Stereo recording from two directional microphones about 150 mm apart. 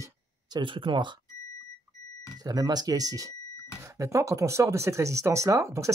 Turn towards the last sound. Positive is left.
turn(degrees=-20)  # may be behind; listen again after turning